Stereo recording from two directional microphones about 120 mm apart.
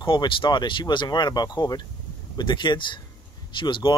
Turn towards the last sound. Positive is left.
turn(degrees=40)  # may be behind; listen again after turning